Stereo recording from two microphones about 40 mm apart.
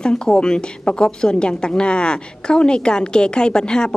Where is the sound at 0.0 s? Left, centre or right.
Left.